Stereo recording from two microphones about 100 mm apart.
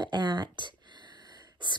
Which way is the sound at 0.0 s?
45° right (ahead or behind).